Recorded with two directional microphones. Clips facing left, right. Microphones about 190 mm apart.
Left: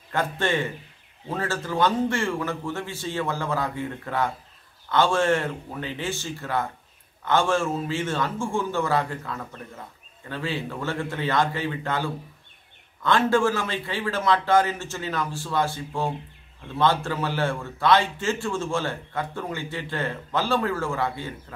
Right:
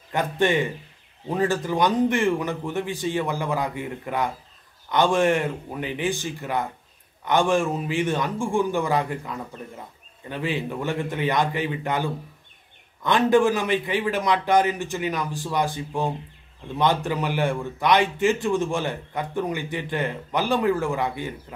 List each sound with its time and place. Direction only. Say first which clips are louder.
0.1 s a man's voice: right 3 dB; 15° right (ahead or behind)